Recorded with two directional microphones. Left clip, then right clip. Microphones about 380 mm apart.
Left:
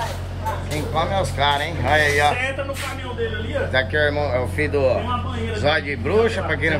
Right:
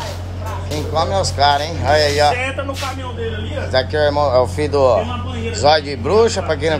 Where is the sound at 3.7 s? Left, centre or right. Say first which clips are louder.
Right 5 dB; centre.